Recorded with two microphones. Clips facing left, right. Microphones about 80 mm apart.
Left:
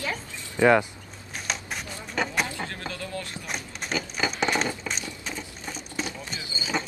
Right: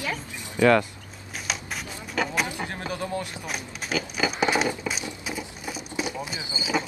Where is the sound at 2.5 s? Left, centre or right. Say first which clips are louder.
Right 2 dB; centre.